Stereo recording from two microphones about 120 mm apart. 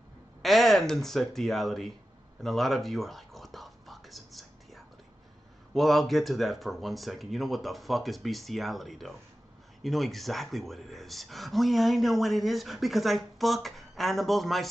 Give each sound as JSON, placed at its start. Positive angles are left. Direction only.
{"t": 0.4, "sound": "speech", "side_deg": 0}
{"t": 2.4, "sound": "whispering", "side_deg": 0}
{"t": 5.8, "sound": "speech", "side_deg": 0}